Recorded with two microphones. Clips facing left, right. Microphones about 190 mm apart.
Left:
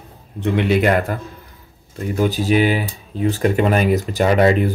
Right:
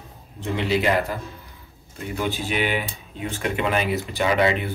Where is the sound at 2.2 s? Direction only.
40° left (ahead or behind).